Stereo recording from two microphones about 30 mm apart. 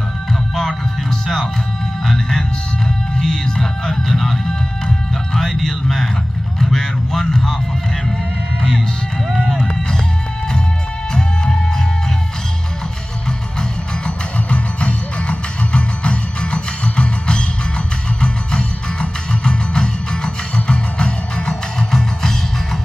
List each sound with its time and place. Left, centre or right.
0.3 s music: centre; by 3.9 s left
3.9 s music: centre
6.6 s a sound: centre
14.5 s music: left
21.7 s music: centre